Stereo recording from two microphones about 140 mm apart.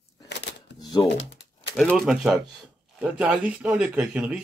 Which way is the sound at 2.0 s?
Centre (ahead or behind).